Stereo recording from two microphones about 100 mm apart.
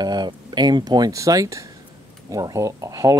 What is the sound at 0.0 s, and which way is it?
Speech, 45° right (ahead or behind).